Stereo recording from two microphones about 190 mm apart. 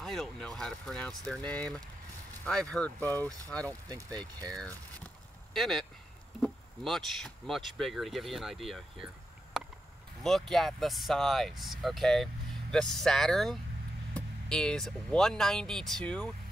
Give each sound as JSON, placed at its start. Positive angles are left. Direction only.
{"t": 0.0, "sound": "speech", "side_deg": 0}
{"t": 3.9, "sound": "speech", "side_deg": -20}
{"t": 5.5, "sound": "speech", "side_deg": 0}